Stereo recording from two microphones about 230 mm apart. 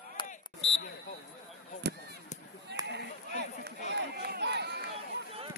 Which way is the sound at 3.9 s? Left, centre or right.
Right.